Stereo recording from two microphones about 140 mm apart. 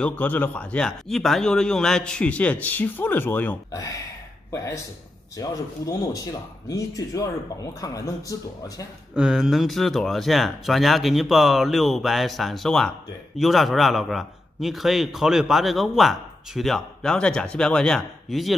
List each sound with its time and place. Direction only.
0.0 s speech: 10° left (ahead or behind)
3.7 s speech: 25° left (ahead or behind)
5.4 s speech: 25° left (ahead or behind)
9.1 s a man's voice: 5° right (ahead or behind)